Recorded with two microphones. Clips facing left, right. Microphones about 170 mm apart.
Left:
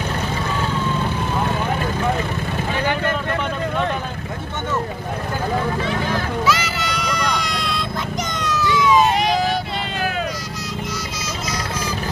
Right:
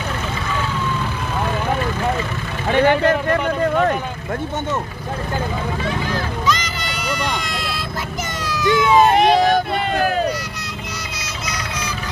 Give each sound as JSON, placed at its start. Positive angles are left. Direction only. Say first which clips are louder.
{"t": 2.7, "sound": "vehicle", "louder": "right 8 dB", "side_deg": -60}
{"t": 6.4, "sound": "vehicle", "louder": "left 1 dB", "side_deg": 5}
{"t": 8.6, "sound": "a sound", "louder": "right 3 dB", "side_deg": -55}
{"t": 11.1, "sound": "music", "louder": "left 2 dB", "side_deg": -65}